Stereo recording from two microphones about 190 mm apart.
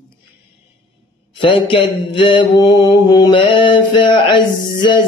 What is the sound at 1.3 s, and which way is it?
Music, 25° left (ahead or behind).